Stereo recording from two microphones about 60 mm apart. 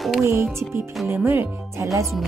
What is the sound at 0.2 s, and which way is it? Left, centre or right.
Speech, right.